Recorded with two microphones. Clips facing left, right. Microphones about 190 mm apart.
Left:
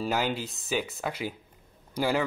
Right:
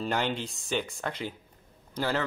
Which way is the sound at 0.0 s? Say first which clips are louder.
Left 1 dB; 5° left (ahead or behind).